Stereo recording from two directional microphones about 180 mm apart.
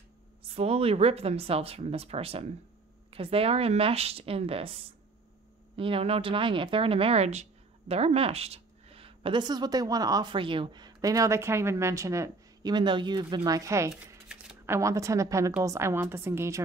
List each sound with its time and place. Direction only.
0.4 s speech: 35° right (ahead or behind)
5.8 s a woman's voice: 30° right (ahead or behind)
14.3 s a sound: 5° right (ahead or behind)
14.8 s a woman's voice: 15° right (ahead or behind)